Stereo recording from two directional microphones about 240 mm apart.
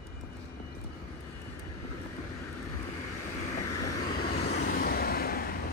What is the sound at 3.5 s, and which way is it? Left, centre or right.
Vehicle, left.